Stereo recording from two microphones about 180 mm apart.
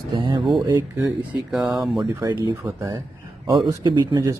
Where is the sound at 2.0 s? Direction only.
25° right (ahead or behind).